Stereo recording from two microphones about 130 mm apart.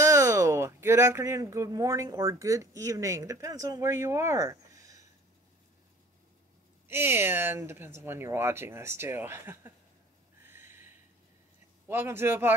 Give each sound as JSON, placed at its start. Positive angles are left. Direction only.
{"t": 0.0, "sound": "speech", "side_deg": -20}
{"t": 6.9, "sound": "speech", "side_deg": -15}
{"t": 10.4, "sound": "a sound", "side_deg": -15}
{"t": 11.9, "sound": "speech", "side_deg": -20}